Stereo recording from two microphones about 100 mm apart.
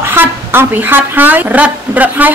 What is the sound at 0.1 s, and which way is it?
A woman's voice, 20° right (ahead or behind).